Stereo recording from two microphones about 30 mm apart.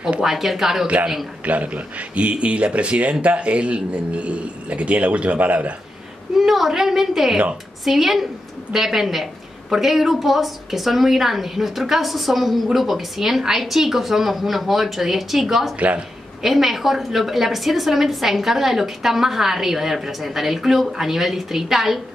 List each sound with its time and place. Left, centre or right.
0.2 s a woman's voice: centre
1.4 s speech: right
6.3 s a woman's voice: centre